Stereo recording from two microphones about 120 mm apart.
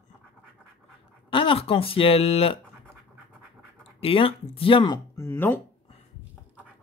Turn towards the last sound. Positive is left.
turn(degrees=20)  # may be behind; listen again after turning